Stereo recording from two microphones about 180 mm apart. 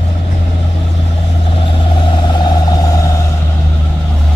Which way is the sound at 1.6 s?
25° left (ahead or behind).